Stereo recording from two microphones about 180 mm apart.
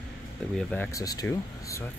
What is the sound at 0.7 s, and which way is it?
Speech, 10° left (ahead or behind).